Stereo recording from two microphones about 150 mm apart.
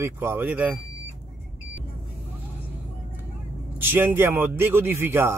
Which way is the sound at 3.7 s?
15° right (ahead or behind).